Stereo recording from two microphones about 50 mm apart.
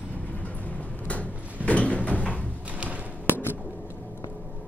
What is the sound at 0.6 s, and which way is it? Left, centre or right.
Music, left.